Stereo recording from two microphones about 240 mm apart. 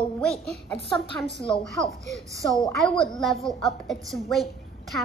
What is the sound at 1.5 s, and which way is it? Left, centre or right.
A woman's voice, centre.